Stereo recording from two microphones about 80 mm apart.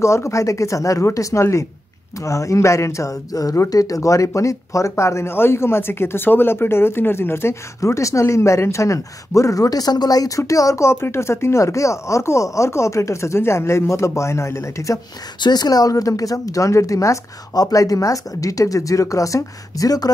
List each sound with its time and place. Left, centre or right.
0.0 s speech: left
15.4 s a woman's voice: left